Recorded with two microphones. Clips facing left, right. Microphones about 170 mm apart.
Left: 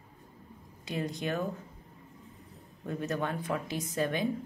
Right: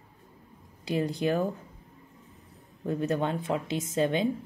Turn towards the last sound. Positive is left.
turn(degrees=-25)  # may be behind; listen again after turning